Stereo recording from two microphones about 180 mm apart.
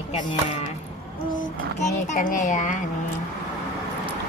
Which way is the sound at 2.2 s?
45° left (ahead or behind).